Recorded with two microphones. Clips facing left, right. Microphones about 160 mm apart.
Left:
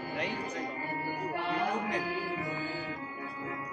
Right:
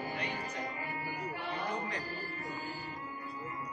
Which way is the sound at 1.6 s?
90° left.